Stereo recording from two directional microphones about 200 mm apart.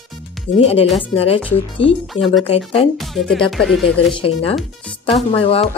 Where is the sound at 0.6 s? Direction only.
30° left (ahead or behind).